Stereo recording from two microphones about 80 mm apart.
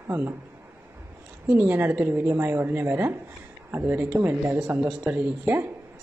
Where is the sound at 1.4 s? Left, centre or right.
Right.